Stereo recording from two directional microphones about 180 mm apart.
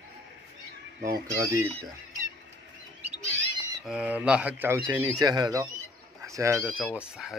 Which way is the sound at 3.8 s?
5° right (ahead or behind).